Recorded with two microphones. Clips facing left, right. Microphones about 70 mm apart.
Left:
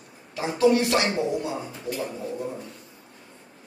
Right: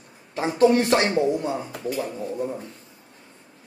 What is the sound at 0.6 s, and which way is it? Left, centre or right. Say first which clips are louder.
Speech: right 2 dB; right.